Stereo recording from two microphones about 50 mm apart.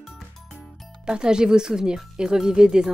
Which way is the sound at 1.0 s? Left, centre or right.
Centre.